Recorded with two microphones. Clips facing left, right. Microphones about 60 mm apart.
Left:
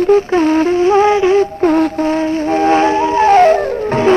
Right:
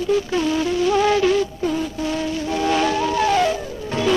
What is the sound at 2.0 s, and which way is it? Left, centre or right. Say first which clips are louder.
Music: left 9 dB; left.